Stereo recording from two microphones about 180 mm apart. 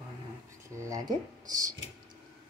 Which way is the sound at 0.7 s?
20° right (ahead or behind).